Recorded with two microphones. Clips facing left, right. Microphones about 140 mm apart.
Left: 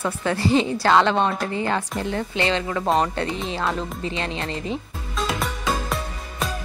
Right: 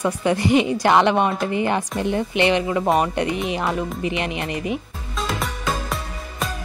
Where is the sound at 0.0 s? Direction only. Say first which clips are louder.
Right 3 dB; 15° right (ahead or behind).